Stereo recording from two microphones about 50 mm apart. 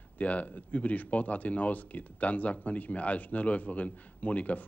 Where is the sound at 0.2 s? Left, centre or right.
Left.